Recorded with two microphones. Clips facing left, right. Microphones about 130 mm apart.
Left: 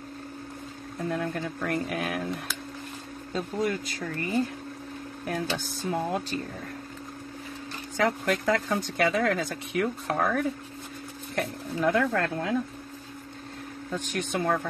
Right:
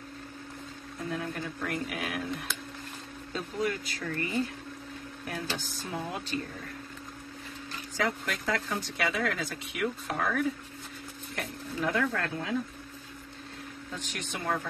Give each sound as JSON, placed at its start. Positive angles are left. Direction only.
{"t": 1.1, "sound": "speech", "side_deg": 45}
{"t": 3.3, "sound": "speech", "side_deg": 40}
{"t": 5.3, "sound": "speech", "side_deg": 45}
{"t": 8.3, "sound": "speech", "side_deg": 45}
{"t": 13.9, "sound": "speech", "side_deg": 50}